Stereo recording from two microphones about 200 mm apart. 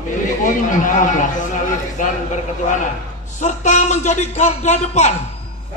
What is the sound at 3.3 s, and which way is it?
A man's voice, 35° left (ahead or behind).